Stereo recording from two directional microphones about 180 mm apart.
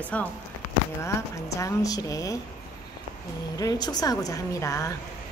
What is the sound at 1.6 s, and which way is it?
Speech, 20° left (ahead or behind).